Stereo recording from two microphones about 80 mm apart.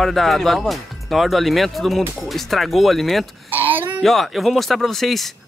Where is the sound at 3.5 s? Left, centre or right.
Right.